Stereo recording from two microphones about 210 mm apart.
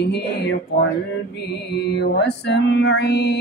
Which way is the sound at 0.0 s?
55° left (ahead or behind).